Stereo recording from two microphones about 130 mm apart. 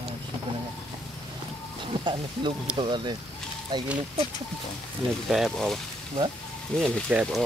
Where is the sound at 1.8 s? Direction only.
35° right (ahead or behind).